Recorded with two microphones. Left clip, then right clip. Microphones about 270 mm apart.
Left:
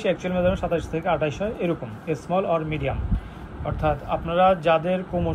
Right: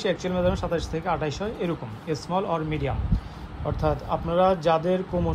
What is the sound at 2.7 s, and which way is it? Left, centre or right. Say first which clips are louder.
Speech: left 2 dB; right.